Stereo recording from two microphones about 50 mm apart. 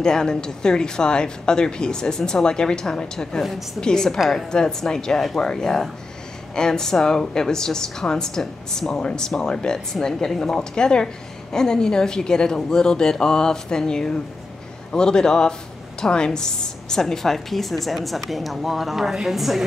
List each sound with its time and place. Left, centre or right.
0.0 s speech: centre